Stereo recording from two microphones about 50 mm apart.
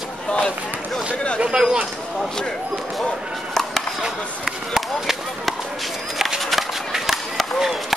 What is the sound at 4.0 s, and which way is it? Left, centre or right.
Speech, centre.